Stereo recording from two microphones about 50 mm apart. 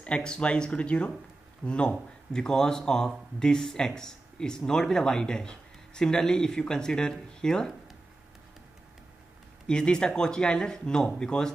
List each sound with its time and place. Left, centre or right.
0.0 s speech: left
9.7 s speech: centre